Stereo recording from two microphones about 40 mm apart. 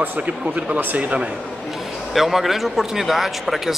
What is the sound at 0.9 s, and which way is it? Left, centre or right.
Speech, right.